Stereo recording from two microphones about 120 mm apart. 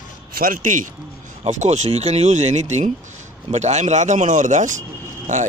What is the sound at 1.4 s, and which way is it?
Speech, 75° right (ahead or behind).